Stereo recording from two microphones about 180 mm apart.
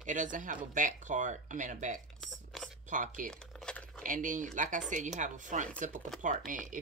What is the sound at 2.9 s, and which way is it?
Speech, 45° right (ahead or behind).